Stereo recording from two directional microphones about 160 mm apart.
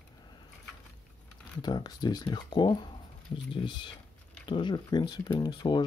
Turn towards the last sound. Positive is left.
turn(degrees=25)  # may be behind; listen again after turning